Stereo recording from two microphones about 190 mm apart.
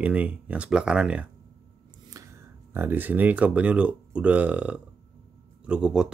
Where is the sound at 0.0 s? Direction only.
5° right (ahead or behind).